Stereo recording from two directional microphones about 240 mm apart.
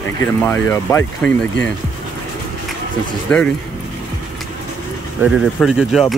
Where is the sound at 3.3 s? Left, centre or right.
Centre.